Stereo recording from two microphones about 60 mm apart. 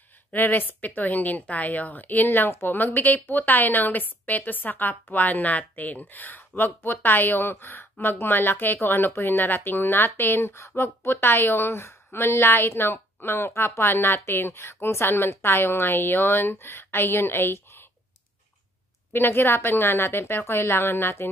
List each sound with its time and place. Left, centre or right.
0.3 s speech: left
19.1 s speech: left